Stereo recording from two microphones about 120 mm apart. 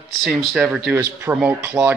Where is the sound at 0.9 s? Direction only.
15° right (ahead or behind).